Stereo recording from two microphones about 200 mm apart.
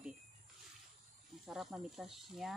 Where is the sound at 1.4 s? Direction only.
Centre (ahead or behind).